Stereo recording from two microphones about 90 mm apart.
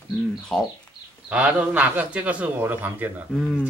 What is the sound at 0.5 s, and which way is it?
Speech, 5° left (ahead or behind).